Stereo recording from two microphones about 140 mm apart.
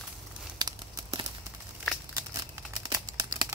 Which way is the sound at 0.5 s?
30° right (ahead or behind).